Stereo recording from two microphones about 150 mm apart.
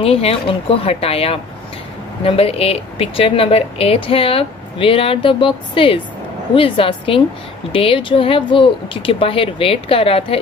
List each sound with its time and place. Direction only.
0.0 s speech: 40° left (ahead or behind)